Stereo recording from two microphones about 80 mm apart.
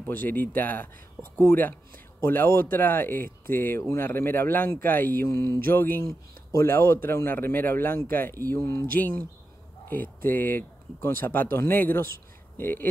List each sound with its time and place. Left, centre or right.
0.0 s a man's voice: left
8.5 s speech: left
9.8 s a man's voice: left